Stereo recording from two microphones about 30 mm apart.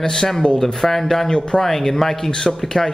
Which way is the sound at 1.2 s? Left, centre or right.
Left.